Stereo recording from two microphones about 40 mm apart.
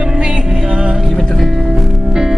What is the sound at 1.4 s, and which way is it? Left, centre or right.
Music, centre.